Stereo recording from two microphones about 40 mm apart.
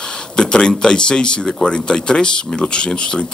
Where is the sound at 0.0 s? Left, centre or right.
Left.